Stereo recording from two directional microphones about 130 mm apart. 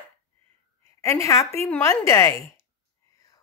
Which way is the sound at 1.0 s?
25° left (ahead or behind).